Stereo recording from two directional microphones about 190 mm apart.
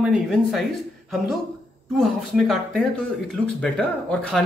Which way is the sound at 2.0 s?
Centre (ahead or behind).